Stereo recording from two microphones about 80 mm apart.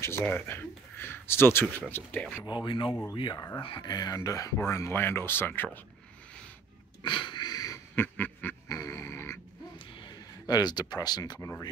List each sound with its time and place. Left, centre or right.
0.2 s speech: left
2.4 s speech: left
3.3 s speech: left
3.6 s speech: left
7.0 s wheeze: left
7.9 s quack: left
8.6 s a sound: left
9.8 s a sound: left